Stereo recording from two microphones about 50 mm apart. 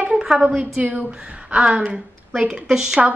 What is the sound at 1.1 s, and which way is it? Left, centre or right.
A woman's voice, centre.